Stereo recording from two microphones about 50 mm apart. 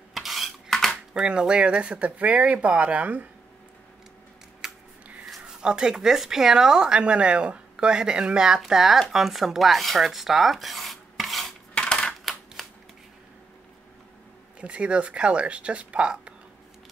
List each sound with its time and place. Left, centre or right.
0.1 s dishes: centre
1.1 s speech: centre; by 3.3 s right
4.6 s a sound: centre
5.6 s speech: centre
9.1 s rub: centre
11.7 s coin: centre
12.6 s camera: centre
14.6 s speech: right